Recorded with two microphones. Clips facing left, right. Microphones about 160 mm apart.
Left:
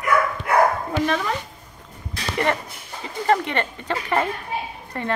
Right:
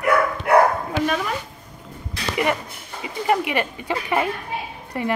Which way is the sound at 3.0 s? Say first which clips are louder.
Even; 10° right (ahead or behind).